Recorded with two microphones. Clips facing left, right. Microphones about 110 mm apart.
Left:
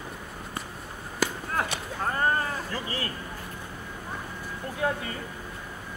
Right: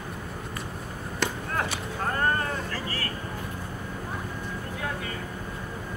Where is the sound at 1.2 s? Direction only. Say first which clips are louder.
Left 1 dB; 5° left (ahead or behind).